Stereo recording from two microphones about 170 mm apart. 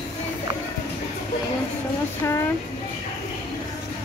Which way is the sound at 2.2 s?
15° left (ahead or behind).